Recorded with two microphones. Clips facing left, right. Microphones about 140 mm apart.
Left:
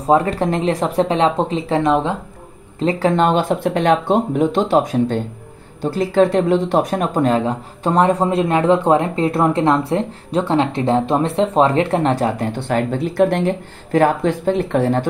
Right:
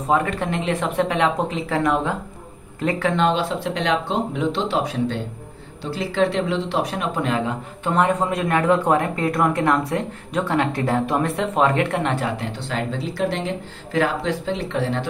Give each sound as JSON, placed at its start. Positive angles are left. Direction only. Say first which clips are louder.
{"t": 0.0, "sound": "speech", "louder": "left 5 dB", "side_deg": 35}
{"t": 3.1, "sound": "speech", "louder": "left 5 dB", "side_deg": 45}